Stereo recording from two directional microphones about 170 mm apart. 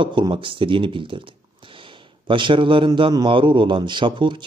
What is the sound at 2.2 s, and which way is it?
A man's voice, 30° right (ahead or behind).